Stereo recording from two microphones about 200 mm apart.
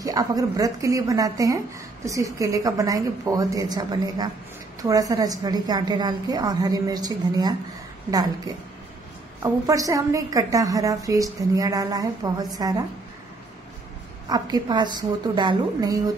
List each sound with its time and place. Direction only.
0.0 s a woman's voice: 20° right (ahead or behind)
14.3 s a woman's voice: 20° right (ahead or behind)